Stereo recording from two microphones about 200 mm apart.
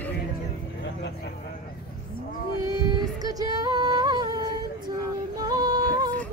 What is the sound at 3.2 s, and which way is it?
Female singing, 20° right (ahead or behind).